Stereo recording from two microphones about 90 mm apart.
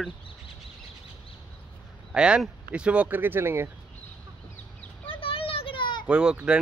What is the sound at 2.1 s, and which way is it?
Speech, 10° right (ahead or behind).